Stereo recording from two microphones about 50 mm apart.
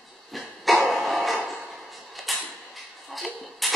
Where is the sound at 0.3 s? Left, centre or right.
Centre.